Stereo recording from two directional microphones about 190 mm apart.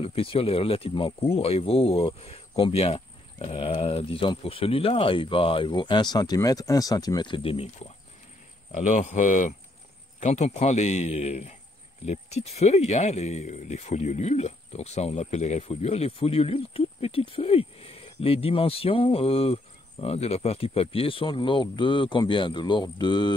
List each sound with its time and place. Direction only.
0.0 s speech: 30° left (ahead or behind)